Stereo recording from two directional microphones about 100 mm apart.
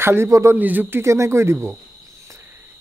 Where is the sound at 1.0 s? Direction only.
30° right (ahead or behind).